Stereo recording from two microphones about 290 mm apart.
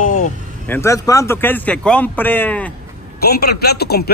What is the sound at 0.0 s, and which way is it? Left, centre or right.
Vehicle, left.